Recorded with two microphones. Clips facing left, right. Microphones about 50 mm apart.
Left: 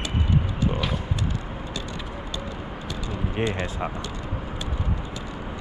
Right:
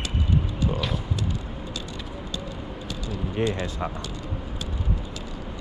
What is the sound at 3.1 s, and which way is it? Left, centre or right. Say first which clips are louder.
Speech: right 1 dB; left.